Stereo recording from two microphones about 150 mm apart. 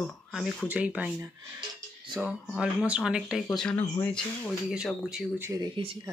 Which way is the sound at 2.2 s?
5° right (ahead or behind).